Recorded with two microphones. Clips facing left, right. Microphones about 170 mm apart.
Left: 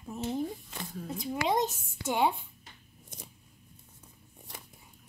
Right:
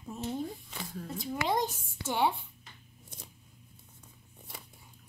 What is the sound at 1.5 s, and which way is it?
Speech, 25° left (ahead or behind).